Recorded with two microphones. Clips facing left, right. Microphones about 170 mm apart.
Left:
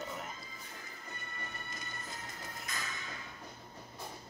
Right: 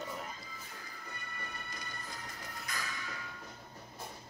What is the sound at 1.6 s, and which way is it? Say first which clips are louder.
Printer: even; 25° left (ahead or behind).